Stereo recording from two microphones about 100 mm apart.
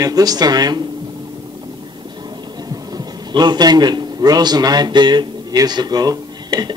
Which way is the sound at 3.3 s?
45° right (ahead or behind).